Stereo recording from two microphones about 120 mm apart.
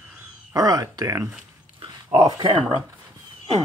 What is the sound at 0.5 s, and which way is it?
Speech, 30° right (ahead or behind).